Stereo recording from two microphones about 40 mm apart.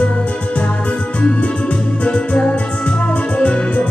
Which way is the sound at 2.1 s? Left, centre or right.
Left.